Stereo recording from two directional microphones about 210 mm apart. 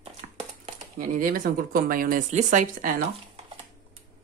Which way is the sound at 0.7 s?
40° right (ahead or behind).